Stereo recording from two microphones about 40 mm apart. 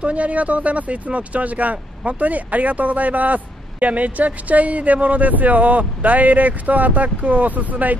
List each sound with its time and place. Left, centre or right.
0.0 s speech: right